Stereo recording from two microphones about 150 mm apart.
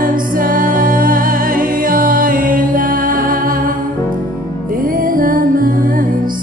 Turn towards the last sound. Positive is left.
turn(degrees=-70)  # may be behind; listen again after turning